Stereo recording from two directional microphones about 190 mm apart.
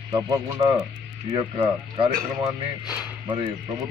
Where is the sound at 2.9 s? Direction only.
5° right (ahead or behind).